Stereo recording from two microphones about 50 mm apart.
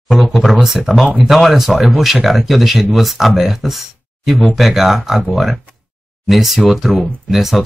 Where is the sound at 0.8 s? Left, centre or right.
Right.